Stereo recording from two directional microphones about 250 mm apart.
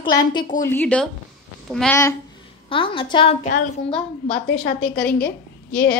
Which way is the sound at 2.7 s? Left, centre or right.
Left.